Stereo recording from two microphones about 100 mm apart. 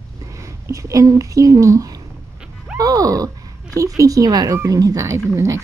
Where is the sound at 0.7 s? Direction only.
35° right (ahead or behind).